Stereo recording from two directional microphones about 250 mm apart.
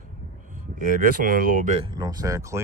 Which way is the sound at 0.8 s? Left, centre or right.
Right.